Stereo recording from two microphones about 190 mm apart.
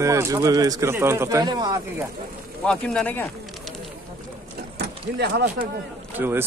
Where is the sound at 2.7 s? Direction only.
5° left (ahead or behind).